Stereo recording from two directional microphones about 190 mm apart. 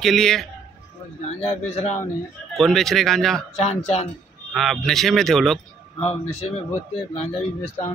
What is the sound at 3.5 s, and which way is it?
Speech, 35° left (ahead or behind).